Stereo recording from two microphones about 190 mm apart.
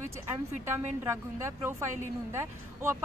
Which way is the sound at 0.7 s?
10° right (ahead or behind).